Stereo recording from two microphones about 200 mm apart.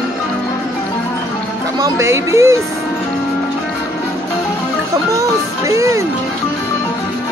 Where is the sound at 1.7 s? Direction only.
15° right (ahead or behind).